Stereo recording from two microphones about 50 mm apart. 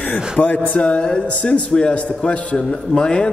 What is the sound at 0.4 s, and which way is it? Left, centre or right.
A man's voice, left.